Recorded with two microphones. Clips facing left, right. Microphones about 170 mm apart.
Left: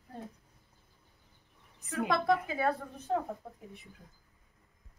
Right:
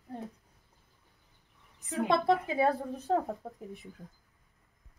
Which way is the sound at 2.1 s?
25° right (ahead or behind).